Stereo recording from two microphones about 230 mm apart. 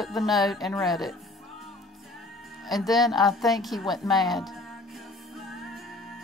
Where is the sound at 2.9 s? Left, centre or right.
Centre.